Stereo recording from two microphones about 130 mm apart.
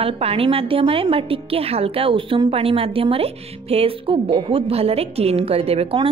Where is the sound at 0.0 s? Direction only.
50° right (ahead or behind).